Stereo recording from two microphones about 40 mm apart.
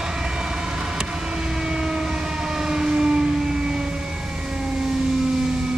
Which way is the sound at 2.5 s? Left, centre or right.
Centre.